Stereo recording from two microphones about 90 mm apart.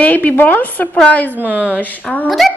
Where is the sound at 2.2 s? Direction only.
Centre (ahead or behind).